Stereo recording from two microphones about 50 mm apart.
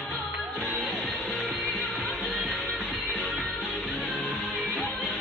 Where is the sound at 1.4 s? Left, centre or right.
Left.